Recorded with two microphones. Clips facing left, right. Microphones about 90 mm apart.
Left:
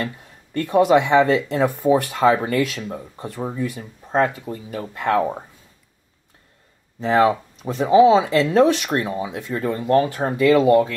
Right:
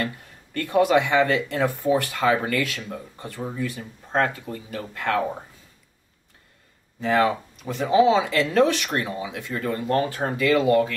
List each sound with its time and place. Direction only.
0.0 s speech: 20° left (ahead or behind)
7.0 s speech: 25° left (ahead or behind)